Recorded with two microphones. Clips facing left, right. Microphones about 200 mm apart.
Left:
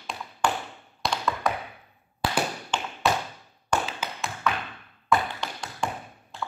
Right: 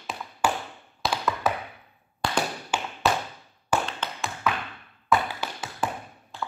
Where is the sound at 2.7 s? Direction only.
10° right (ahead or behind).